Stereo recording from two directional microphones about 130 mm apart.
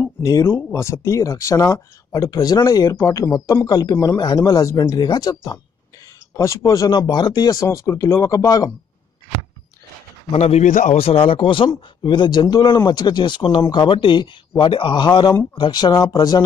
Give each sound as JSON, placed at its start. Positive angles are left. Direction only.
{"t": 0.0, "sound": "a man's voice", "side_deg": 20}
{"t": 7.6, "sound": "speech", "side_deg": 20}
{"t": 10.3, "sound": "a man's voice", "side_deg": 60}
{"t": 11.0, "sound": "a man's voice", "side_deg": 45}